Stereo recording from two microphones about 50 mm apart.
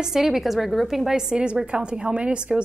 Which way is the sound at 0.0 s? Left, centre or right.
Centre.